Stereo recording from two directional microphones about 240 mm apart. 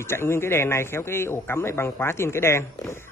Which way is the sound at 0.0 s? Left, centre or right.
Centre.